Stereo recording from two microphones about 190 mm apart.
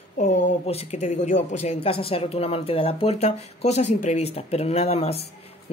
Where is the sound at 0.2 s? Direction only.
35° left (ahead or behind).